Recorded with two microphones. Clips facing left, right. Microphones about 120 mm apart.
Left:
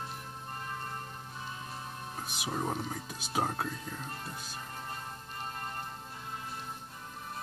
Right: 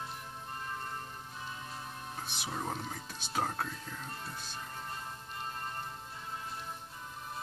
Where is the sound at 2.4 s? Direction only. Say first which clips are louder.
Left 4 dB; 10° left (ahead or behind).